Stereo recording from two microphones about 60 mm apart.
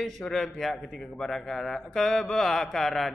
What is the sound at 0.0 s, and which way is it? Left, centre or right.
Speech, centre.